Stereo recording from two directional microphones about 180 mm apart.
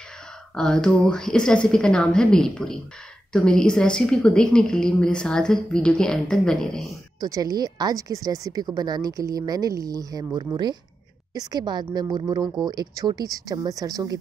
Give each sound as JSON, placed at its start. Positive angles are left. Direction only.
{"t": 0.6, "sound": "a woman's voice", "side_deg": 5}
{"t": 7.2, "sound": "a woman's voice", "side_deg": -20}